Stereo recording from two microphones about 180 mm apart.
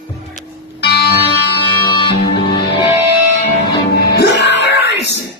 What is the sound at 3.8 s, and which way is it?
Music, 60° left (ahead or behind).